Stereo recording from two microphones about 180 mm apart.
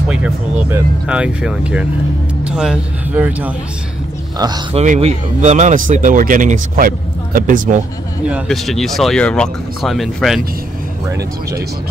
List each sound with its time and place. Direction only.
0.1 s speech: 10° right (ahead or behind)
4.4 s speech: 20° right (ahead or behind)
4.7 s speech: 40° right (ahead or behind)
8.3 s speech: 5° right (ahead or behind)